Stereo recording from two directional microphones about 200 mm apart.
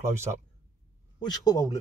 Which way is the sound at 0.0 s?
15° right (ahead or behind).